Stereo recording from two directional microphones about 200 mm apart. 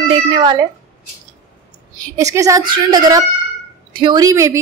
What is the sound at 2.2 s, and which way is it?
A woman's voice, 15° right (ahead or behind).